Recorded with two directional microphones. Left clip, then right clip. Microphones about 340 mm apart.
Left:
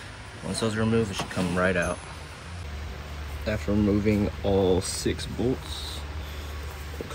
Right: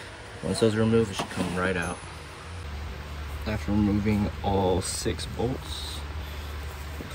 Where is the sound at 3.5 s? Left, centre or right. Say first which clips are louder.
Left 4 dB; centre.